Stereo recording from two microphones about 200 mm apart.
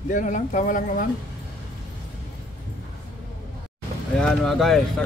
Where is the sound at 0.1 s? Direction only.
40° left (ahead or behind).